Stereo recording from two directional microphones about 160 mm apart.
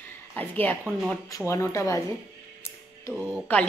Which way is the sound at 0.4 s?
10° left (ahead or behind).